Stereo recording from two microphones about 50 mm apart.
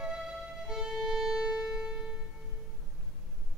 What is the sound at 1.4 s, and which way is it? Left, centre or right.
Music, centre.